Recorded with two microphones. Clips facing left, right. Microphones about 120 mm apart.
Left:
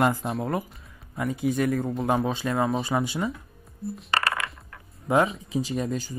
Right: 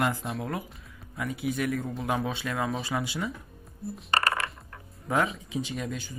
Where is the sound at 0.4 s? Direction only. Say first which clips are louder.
Left 5 dB; 35° left (ahead or behind).